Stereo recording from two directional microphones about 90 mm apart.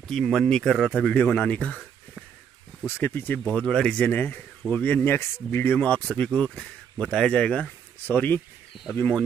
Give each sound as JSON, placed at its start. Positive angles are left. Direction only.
{"t": 0.1, "sound": "speech", "side_deg": 0}
{"t": 3.0, "sound": "speech", "side_deg": 20}
{"t": 3.4, "sound": "speech", "side_deg": 10}
{"t": 4.1, "sound": "speech", "side_deg": 20}